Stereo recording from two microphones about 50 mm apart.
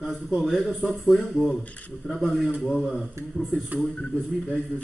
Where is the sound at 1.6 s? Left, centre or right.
Left.